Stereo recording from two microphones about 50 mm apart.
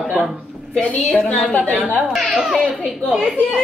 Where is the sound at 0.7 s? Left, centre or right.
Left.